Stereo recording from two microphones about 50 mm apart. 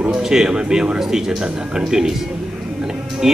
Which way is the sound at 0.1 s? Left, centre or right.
Centre.